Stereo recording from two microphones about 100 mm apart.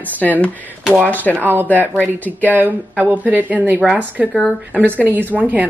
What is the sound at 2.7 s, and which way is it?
A woman's voice, 15° right (ahead or behind).